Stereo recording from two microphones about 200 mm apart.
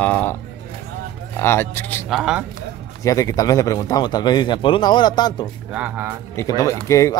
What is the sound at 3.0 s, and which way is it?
A man's voice, 15° left (ahead or behind).